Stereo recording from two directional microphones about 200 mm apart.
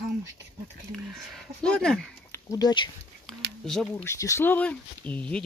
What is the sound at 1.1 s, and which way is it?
Speech, centre (ahead or behind).